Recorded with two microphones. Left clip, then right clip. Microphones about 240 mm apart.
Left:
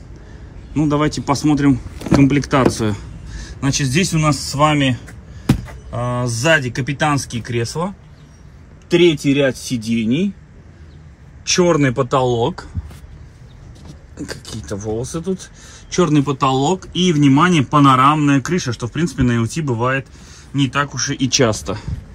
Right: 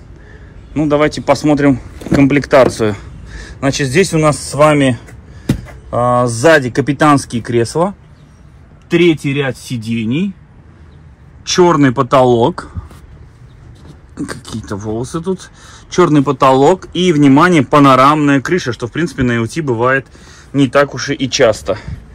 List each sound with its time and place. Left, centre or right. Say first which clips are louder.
0.7 s speech: right 5 dB; centre
8.8 s speech: right 2 dB; right
11.4 s a man's voice: right 5 dB; centre
14.1 s speech: right 5 dB; centre